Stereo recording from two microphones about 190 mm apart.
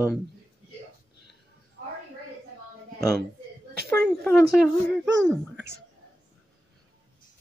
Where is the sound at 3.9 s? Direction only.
10° left (ahead or behind).